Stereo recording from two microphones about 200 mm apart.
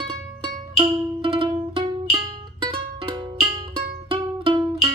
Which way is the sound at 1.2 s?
25° right (ahead or behind).